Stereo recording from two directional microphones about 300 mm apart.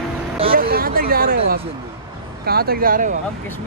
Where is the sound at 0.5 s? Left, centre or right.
Right.